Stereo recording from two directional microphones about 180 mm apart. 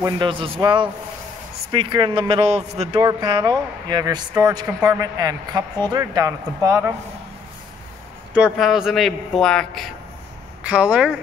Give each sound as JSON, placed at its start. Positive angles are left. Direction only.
{"t": 0.0, "sound": "a man's voice", "side_deg": -30}
{"t": 3.0, "sound": "speech", "side_deg": -20}
{"t": 8.3, "sound": "a man's voice", "side_deg": -5}